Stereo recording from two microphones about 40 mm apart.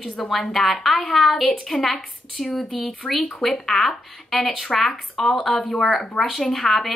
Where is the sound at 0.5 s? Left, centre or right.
Centre.